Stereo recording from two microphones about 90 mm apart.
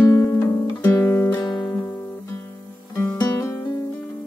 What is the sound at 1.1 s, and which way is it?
Music, 25° left (ahead or behind).